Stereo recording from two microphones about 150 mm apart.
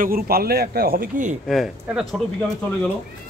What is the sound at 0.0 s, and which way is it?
A man's voice, 80° right.